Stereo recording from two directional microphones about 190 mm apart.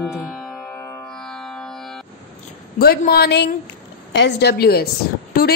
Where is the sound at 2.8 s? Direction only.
55° left (ahead or behind).